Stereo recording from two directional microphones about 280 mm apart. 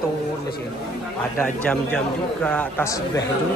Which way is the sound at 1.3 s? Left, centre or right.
Centre.